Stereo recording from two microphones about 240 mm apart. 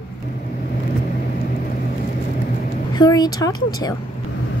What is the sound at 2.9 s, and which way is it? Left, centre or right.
A woman's voice, centre.